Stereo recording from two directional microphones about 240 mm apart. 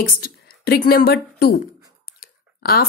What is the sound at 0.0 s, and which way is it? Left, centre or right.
Speech, left.